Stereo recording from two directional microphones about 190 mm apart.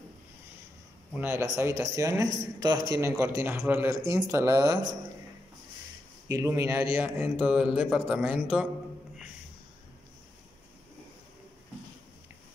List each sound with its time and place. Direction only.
1.1 s a man's voice: 15° right (ahead or behind)
6.2 s a man's voice: 15° right (ahead or behind)